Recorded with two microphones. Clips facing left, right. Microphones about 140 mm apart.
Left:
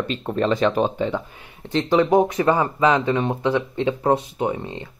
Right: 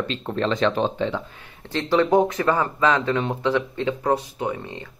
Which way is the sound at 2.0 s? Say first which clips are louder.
Left 1 dB; 5° left (ahead or behind).